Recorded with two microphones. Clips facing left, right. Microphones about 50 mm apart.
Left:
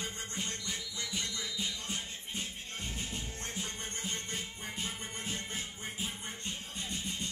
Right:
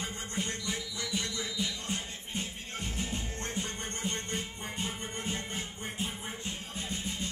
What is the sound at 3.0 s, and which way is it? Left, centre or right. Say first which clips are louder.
Music: right 4 dB; right.